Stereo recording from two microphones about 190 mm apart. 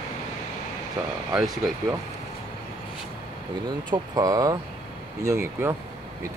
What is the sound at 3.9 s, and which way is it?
Speech, 20° right (ahead or behind).